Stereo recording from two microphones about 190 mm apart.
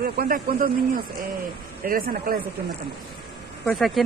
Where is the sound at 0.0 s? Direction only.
50° right (ahead or behind).